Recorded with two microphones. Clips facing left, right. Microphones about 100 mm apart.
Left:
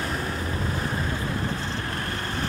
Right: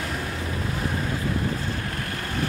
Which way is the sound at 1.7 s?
35° left (ahead or behind).